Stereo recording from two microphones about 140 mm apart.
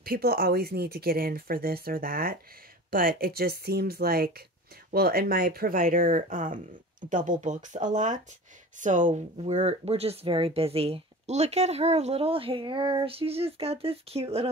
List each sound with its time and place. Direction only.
0.0 s speech: 90° right; by 14.5 s 45° right (ahead or behind)